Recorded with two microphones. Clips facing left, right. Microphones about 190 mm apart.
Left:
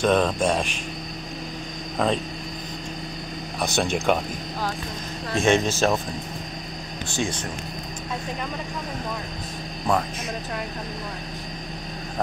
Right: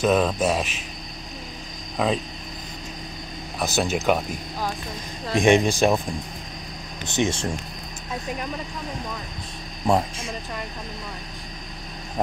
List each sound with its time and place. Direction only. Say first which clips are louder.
0.0 s speech: even; 5° right (ahead or behind)
2.0 s speech: even; 5° right (ahead or behind)
3.5 s speech: even; 5° right (ahead or behind)
5.3 s speech: right 3 dB; 15° right (ahead or behind)
7.1 s speech: right 5 dB; 25° right (ahead or behind)
9.9 s speech: right 2 dB; 25° right (ahead or behind)